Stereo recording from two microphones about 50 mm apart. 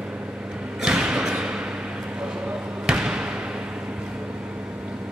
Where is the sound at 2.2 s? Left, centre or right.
Centre.